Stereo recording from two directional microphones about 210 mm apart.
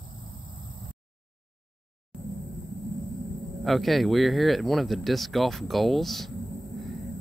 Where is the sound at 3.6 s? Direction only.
Centre (ahead or behind).